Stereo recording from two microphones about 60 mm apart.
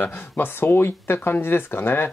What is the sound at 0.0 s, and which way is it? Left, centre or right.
Speech, left.